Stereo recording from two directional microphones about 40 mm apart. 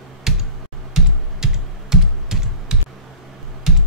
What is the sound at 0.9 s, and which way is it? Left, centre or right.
Computer keyboard, centre.